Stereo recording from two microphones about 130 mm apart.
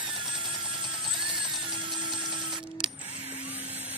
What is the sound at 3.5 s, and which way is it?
Vacuum cleaner, 15° right (ahead or behind).